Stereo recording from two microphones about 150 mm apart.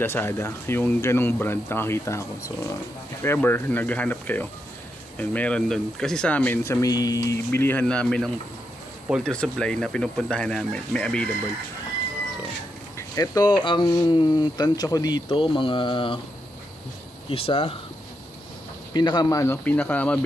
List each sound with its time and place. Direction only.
0.0 s speech: 15° left (ahead or behind)
12.9 s speech: 20° left (ahead or behind)
17.3 s speech: 40° left (ahead or behind)
18.9 s speech: 30° left (ahead or behind); by 20.2 s 10° left (ahead or behind)